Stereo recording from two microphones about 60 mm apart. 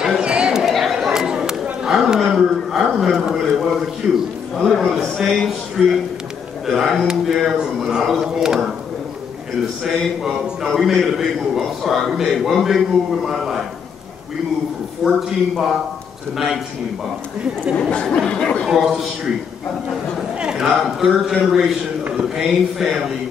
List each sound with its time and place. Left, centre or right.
0.2 s chatter: centre
1.0 s a sound: centre
4.6 s a man's voice: centre
9.8 s a man's voice: centre
15.0 s a man's voice: centre
17.7 s speech: centre
18.7 s a man's voice: centre
20.3 s a man's voice: centre